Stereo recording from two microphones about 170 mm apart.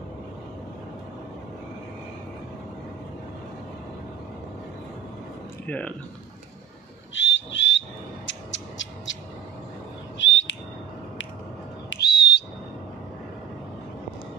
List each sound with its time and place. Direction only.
5.7 s speech: 10° left (ahead or behind)
7.2 s frog: 90° left
8.3 s cat: 90° left
10.1 s bird: 90° left
11.9 s whistle: 75° left (ahead or behind)